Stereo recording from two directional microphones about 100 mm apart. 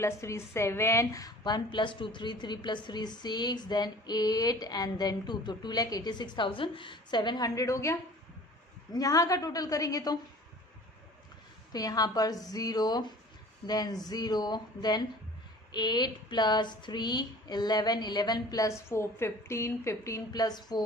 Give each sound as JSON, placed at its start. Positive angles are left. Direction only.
{"t": 0.0, "sound": "a woman's voice", "side_deg": 25}
{"t": 11.7, "sound": "a woman's voice", "side_deg": 40}